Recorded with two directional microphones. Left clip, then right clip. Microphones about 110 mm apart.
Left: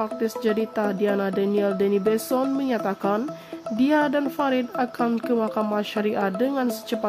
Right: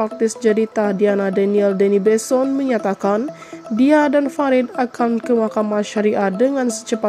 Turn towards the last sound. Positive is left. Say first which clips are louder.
# right 6 dB
turn(degrees=-25)  # may be behind; listen again after turning